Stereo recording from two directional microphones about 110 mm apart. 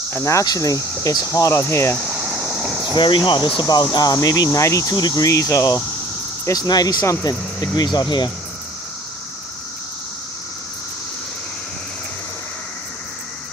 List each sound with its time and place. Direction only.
0.1 s speech: 30° left (ahead or behind)
2.0 s a sound: 10° right (ahead or behind)
3.0 s speech: 45° left (ahead or behind)